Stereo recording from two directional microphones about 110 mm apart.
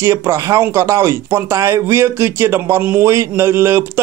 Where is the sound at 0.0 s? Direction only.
25° right (ahead or behind).